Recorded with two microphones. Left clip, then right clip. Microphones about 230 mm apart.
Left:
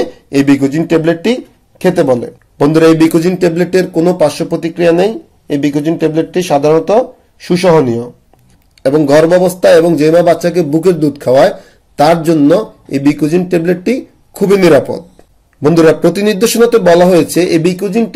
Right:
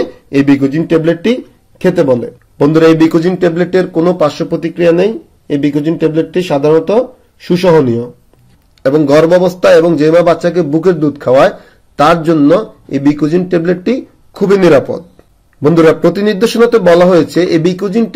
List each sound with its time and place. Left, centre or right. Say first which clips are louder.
0.0 s a man's voice: even; centre
8.8 s a man's voice: even; centre